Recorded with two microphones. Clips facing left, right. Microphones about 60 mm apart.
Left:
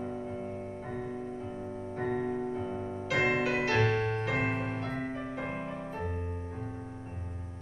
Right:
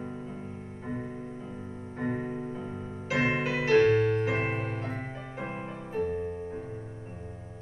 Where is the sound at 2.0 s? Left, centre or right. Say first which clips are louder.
Even; right.